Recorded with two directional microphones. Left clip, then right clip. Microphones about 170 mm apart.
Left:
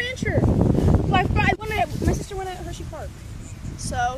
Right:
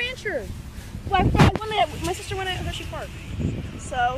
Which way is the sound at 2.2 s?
50° left (ahead or behind).